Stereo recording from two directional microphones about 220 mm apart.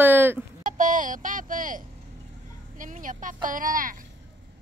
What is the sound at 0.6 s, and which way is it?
Speech, 35° right (ahead or behind).